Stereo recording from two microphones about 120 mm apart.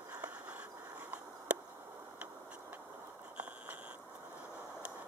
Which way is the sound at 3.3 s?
10° right (ahead or behind).